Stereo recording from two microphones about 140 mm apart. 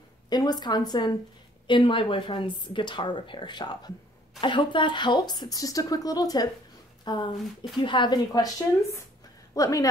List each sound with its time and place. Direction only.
0.3 s speech: 30° left (ahead or behind)